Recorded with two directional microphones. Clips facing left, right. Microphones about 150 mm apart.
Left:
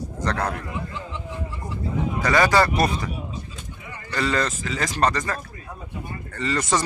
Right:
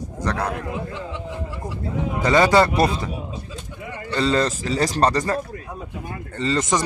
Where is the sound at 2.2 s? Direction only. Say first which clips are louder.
Right 3 dB; 25° right (ahead or behind).